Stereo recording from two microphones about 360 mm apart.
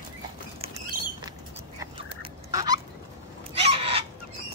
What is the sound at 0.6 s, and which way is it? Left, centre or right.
Patter, centre.